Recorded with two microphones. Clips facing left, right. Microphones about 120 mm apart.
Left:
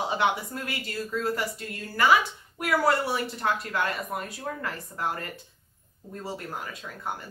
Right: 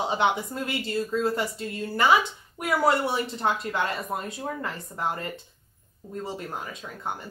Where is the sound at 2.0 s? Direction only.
25° right (ahead or behind).